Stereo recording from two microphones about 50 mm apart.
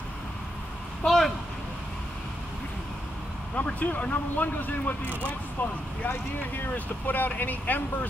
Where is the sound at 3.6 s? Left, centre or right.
Left.